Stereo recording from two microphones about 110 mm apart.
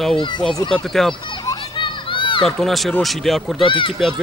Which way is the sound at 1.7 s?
50° left (ahead or behind).